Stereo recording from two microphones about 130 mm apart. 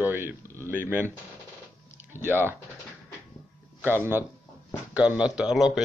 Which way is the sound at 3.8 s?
15° right (ahead or behind).